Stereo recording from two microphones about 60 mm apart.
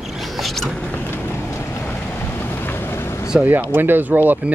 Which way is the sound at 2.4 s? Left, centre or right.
Left.